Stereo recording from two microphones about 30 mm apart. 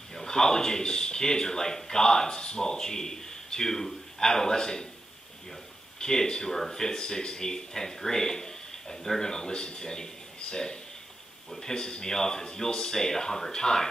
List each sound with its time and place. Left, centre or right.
0.1 s speech: centre
5.9 s speech: left